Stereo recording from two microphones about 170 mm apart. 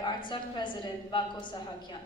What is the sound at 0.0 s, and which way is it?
A woman's voice, 25° left (ahead or behind).